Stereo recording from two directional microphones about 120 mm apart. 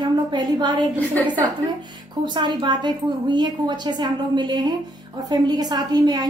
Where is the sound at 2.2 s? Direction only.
40° right (ahead or behind).